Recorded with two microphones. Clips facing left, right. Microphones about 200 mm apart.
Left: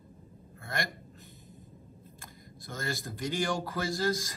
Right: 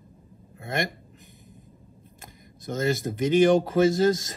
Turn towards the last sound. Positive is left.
turn(degrees=-20)  # may be behind; listen again after turning